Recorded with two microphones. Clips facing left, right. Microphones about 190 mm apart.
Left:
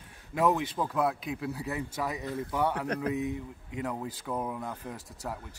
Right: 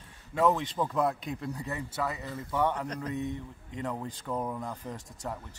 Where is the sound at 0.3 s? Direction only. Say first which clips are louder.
Even; 10° left (ahead or behind).